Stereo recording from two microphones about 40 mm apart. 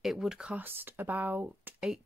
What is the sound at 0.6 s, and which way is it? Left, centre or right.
Speech, right.